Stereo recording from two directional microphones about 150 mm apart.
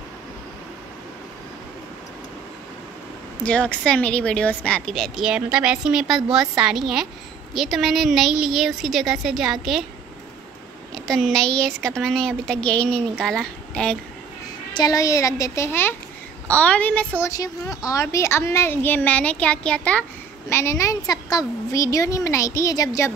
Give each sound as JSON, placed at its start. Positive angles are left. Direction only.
{"t": 3.4, "sound": "speech", "side_deg": 5}
{"t": 11.1, "sound": "speech", "side_deg": 0}
{"t": 14.7, "sound": "a woman's voice", "side_deg": 25}
{"t": 17.2, "sound": "a child's voice", "side_deg": 25}
{"t": 20.4, "sound": "a woman's voice", "side_deg": 20}